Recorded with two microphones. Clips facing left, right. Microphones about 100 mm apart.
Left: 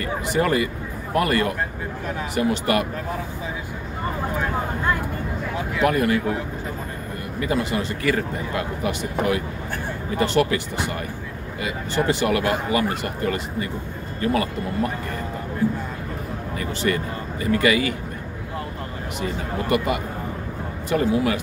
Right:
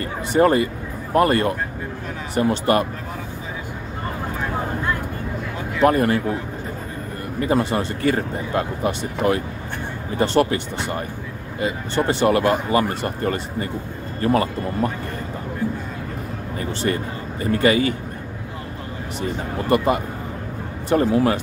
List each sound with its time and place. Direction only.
0.0 s speech: 35° right (ahead or behind)
5.8 s speech: 35° right (ahead or behind)
7.3 s speech: 40° right (ahead or behind)
16.5 s speech: 35° right (ahead or behind)
19.7 s speech: 35° right (ahead or behind)
21.0 s speech: 40° right (ahead or behind)